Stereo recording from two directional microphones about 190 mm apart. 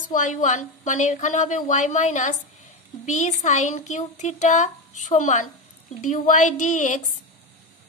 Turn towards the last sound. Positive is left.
turn(degrees=40)  # may be behind; listen again after turning